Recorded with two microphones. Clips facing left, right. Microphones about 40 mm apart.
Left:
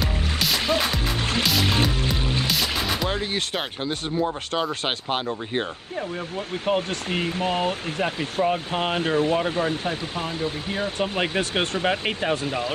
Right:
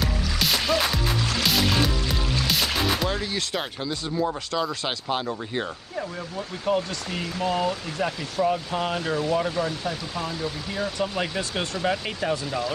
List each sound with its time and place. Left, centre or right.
0.0 s music: centre
0.6 s music: left
2.4 s music: centre
3.1 s speech: left
6.3 s speech: left